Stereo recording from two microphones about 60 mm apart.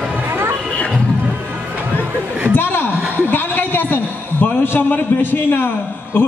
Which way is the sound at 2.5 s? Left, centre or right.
Left.